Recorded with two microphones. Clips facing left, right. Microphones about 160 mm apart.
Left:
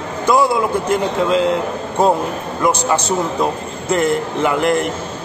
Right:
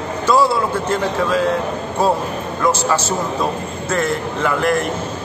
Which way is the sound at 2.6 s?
15° left (ahead or behind).